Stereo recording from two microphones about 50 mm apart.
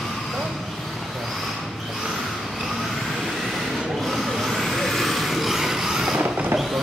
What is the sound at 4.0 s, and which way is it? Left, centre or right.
Vehicle, centre.